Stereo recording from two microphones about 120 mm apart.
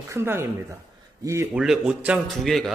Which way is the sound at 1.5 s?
5° right (ahead or behind).